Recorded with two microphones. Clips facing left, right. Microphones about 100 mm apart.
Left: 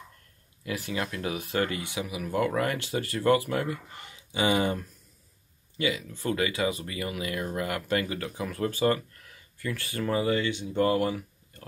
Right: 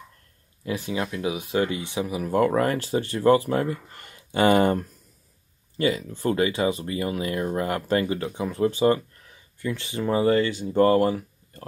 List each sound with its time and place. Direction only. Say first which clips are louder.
0.7 s speech: right 4 dB; 25° right (ahead or behind)
1.1 s speech: right 5 dB; 15° right (ahead or behind)
1.8 s speech: right 6 dB; 30° right (ahead or behind); by 4.8 s 50° right (ahead or behind)
5.8 s speech: right 5 dB; 40° right (ahead or behind); by 10.2 s 20° right (ahead or behind)
10.2 s speech: right 6 dB; 40° right (ahead or behind)